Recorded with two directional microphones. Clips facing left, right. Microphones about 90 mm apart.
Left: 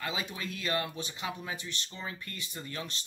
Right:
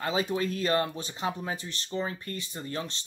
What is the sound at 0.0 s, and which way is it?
Speech, 35° right (ahead or behind).